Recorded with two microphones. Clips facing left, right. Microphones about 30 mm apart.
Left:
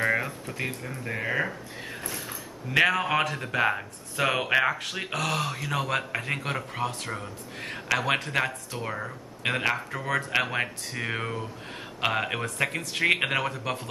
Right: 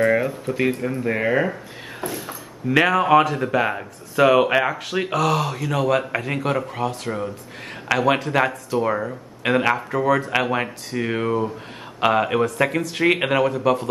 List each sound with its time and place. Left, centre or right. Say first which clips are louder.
0.0 s a sound: right 7 dB; centre
0.3 s speech: right 11 dB; right
2.0 s speech: right 10 dB; centre
8.0 s speech: right 10 dB; centre